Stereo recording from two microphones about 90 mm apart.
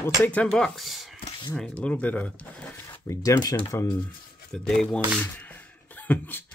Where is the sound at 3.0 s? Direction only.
35° left (ahead or behind).